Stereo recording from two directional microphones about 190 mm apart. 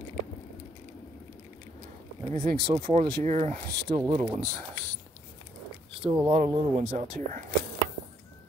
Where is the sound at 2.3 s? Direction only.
20° left (ahead or behind).